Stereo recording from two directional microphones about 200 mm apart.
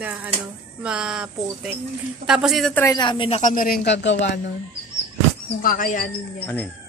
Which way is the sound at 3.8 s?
60° left (ahead or behind).